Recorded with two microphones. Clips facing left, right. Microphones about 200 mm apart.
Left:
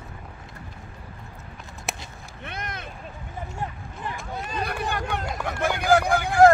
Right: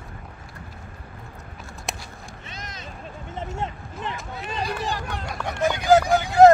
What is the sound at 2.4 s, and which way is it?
Vehicle, 60° left (ahead or behind).